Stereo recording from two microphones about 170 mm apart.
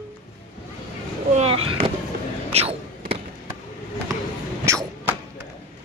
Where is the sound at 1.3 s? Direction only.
35° right (ahead or behind).